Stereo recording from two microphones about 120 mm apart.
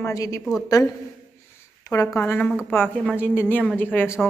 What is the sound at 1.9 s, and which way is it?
A woman's voice, 20° left (ahead or behind).